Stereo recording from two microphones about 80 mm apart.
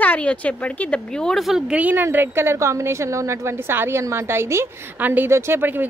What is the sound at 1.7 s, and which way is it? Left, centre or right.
A woman's voice, right.